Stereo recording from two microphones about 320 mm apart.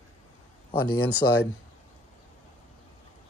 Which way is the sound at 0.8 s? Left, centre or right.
Left.